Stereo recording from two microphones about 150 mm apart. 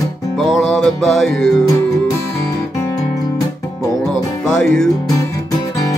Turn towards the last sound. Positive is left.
turn(degrees=5)  # may be behind; listen again after turning